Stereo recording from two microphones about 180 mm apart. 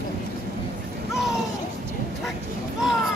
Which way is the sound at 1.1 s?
Centre (ahead or behind).